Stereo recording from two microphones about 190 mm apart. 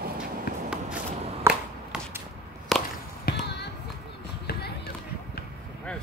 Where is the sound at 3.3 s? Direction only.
50° left (ahead or behind).